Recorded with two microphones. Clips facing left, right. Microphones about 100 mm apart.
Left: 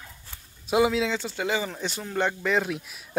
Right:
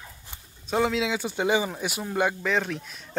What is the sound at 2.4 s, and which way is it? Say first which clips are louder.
Speech: left 1 dB; 5° left (ahead or behind).